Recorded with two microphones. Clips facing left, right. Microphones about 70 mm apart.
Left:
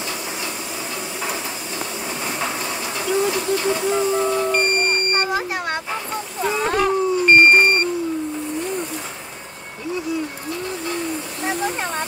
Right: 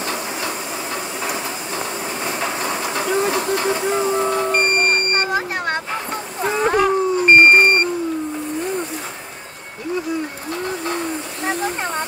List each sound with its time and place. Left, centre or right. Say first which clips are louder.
3.3 s steam: right 1 dB; right
3.6 s speech: right 1 dB; right
4.4 s vehicle: right 1 dB; centre
5.1 s a sound: right 1 dB; right
6.4 s cat: right 3 dB; centre
11.4 s speech: right 1 dB; centre